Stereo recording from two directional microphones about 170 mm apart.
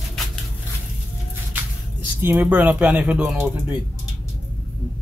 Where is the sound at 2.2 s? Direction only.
10° right (ahead or behind).